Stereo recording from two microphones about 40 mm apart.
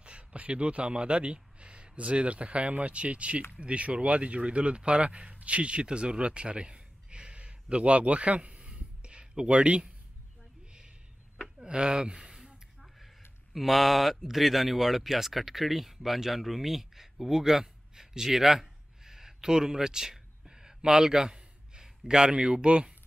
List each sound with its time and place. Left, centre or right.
0.0 s speech: right
11.5 s a sound: right
12.8 s speech: centre; by 22.9 s right